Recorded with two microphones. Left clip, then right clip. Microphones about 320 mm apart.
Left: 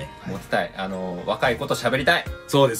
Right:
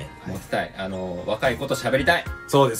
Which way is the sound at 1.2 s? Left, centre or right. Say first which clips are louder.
Left 1 dB; centre.